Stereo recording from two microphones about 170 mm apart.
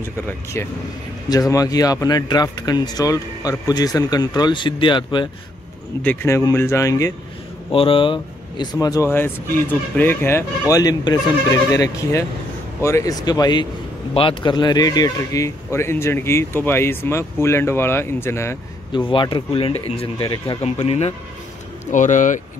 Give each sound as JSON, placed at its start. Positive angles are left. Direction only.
{"t": 0.0, "sound": "speech", "side_deg": 15}
{"t": 6.0, "sound": "speech", "side_deg": 15}
{"t": 7.7, "sound": "speech", "side_deg": 30}
{"t": 18.9, "sound": "speech", "side_deg": 30}
{"t": 20.6, "sound": "speech", "side_deg": 40}